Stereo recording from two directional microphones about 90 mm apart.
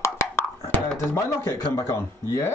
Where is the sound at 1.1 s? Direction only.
35° left (ahead or behind).